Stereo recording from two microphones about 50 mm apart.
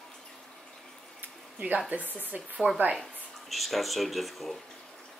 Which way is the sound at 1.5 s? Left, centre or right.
Right.